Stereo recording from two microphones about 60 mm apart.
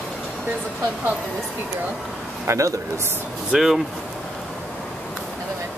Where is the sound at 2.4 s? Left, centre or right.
Right.